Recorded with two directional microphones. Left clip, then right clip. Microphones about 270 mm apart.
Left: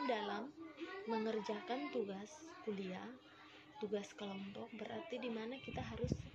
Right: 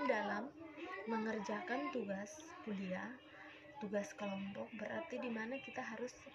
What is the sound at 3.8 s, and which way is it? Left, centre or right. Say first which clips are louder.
Speech: right 1 dB; left.